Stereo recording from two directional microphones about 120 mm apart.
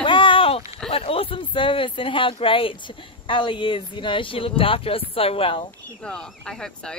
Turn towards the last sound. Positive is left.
turn(degrees=5)  # may be behind; listen again after turning